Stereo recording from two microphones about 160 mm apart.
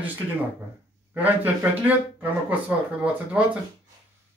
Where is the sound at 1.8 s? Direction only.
10° right (ahead or behind).